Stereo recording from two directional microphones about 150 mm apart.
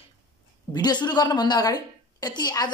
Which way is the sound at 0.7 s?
30° left (ahead or behind).